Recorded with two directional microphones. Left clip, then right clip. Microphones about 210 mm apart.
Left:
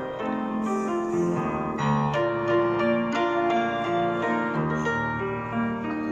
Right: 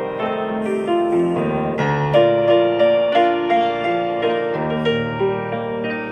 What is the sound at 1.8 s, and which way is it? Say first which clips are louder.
Music: right 10 dB; 35° right (ahead or behind).